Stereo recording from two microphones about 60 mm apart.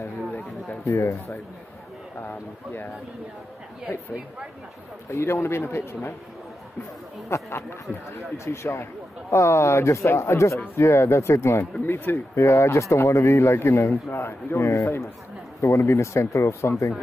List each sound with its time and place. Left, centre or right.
0.3 s a sound: left
2.2 s speech: left
5.1 s a man's voice: left
7.2 s a man's voice: left
11.8 s speech: left
12.4 s a man's voice: left